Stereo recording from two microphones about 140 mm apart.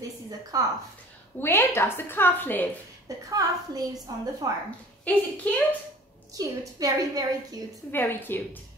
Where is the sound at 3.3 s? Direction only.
25° right (ahead or behind).